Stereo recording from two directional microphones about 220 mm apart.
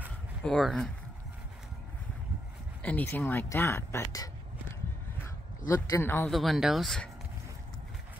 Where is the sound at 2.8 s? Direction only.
10° left (ahead or behind).